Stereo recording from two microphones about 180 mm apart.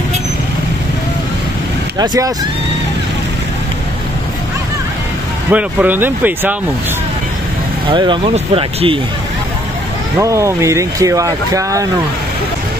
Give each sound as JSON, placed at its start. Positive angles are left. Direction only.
{"t": 2.0, "sound": "speech", "side_deg": -20}
{"t": 5.5, "sound": "speech", "side_deg": -5}
{"t": 7.9, "sound": "speech", "side_deg": -25}
{"t": 10.1, "sound": "speech", "side_deg": -15}